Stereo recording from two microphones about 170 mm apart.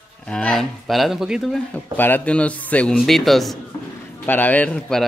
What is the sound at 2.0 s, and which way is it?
A man's voice, 10° left (ahead or behind).